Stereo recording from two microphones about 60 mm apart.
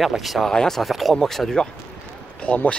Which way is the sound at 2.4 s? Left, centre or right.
Left.